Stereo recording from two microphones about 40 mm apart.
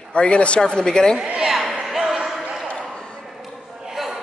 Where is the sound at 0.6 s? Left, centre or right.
Centre.